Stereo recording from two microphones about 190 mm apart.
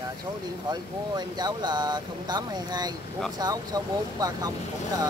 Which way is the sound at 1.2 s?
20° right (ahead or behind).